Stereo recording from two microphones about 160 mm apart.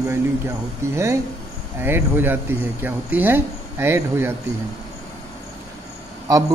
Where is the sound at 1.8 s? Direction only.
15° right (ahead or behind).